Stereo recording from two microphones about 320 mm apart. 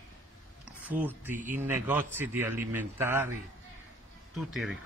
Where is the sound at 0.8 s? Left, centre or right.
Centre.